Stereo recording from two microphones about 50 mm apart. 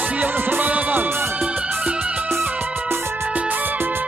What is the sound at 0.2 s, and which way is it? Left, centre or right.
Music, right.